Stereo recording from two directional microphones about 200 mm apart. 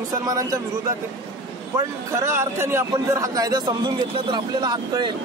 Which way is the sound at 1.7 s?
15° right (ahead or behind).